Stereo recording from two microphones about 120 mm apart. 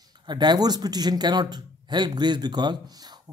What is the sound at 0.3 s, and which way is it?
Speech, 40° right (ahead or behind).